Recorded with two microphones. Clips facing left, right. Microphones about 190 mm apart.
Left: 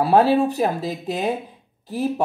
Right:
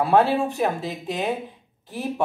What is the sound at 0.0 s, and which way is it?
A woman's voice, 35° left (ahead or behind).